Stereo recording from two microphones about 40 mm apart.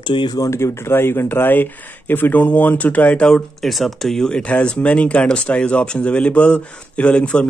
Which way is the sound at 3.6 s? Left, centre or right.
Centre.